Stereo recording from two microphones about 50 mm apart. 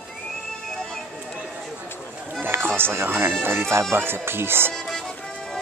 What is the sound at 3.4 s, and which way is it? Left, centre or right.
Bagpipes, right.